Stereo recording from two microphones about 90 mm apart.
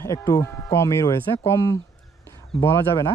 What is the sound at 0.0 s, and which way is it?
A man's voice, 35° left (ahead or behind).